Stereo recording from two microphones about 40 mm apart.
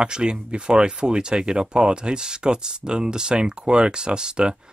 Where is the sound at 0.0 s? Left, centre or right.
Right.